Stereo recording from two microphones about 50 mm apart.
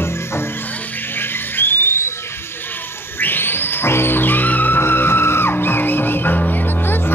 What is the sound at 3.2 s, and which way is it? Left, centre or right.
Music, left.